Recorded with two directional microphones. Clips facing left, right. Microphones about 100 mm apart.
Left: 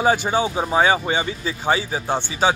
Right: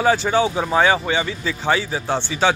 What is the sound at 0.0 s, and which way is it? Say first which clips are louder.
Speech: right 2 dB; 15° left (ahead or behind).